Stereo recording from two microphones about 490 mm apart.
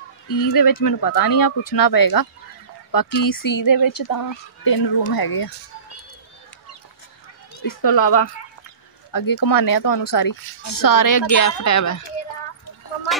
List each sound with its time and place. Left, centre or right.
0.3 s speech: left
7.6 s speech: left